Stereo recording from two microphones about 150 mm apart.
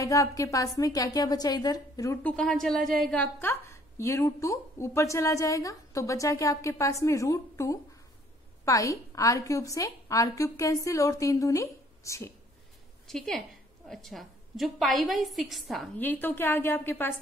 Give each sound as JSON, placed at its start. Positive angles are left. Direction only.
{"t": 0.0, "sound": "a woman's voice", "side_deg": 20}
{"t": 2.2, "sound": "a woman's voice", "side_deg": 5}
{"t": 13.0, "sound": "a woman's voice", "side_deg": 5}
{"t": 16.0, "sound": "a woman's voice", "side_deg": 15}